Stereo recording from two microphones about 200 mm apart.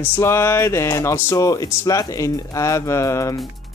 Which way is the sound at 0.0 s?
10° left (ahead or behind).